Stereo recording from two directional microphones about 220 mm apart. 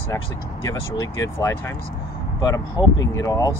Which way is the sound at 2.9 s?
60° left (ahead or behind).